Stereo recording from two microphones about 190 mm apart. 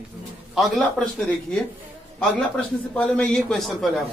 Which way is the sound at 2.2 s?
5° left (ahead or behind).